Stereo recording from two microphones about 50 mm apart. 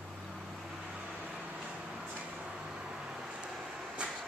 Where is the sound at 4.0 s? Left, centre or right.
Right.